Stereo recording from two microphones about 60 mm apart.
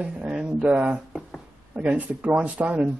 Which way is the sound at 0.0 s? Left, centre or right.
Right.